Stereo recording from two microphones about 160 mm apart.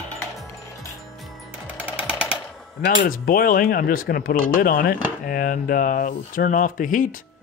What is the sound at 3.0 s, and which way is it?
Speech, 65° left (ahead or behind).